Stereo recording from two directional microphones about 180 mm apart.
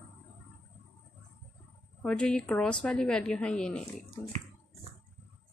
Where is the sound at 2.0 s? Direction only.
5° left (ahead or behind).